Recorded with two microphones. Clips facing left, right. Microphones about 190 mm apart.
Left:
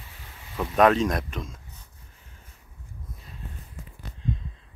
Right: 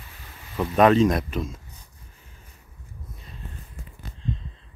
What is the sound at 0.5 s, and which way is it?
Speech, centre (ahead or behind).